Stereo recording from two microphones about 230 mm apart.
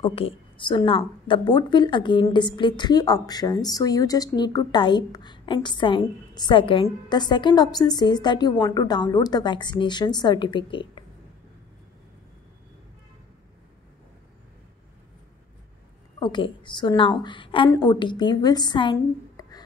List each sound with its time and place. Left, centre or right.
0.0 s a woman's voice: left
16.2 s a woman's voice: centre